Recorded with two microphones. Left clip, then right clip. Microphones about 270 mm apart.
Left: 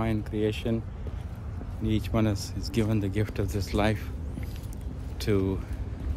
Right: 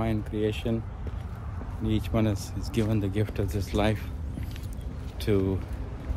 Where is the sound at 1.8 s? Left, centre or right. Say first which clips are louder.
Even; centre.